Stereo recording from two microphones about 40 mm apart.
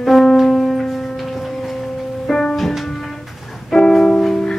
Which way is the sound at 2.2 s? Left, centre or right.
Centre.